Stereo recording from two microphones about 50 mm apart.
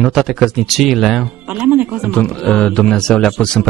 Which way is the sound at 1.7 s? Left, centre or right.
Right.